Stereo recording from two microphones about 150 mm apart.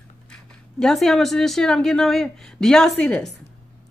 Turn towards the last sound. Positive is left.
turn(degrees=5)  # may be behind; listen again after turning